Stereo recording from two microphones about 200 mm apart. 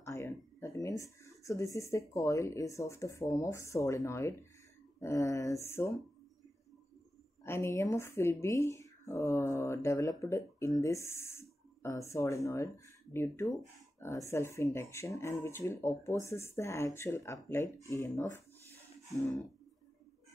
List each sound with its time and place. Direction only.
0.0 s speech: 15° left (ahead or behind)
7.4 s speech: 10° left (ahead or behind)